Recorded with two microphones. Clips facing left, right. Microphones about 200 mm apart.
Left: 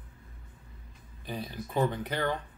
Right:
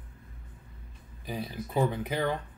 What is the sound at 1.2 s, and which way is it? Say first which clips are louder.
Speech: right 2 dB; 5° right (ahead or behind).